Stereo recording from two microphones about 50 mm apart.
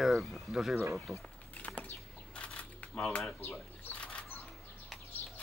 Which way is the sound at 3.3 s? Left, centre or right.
Left.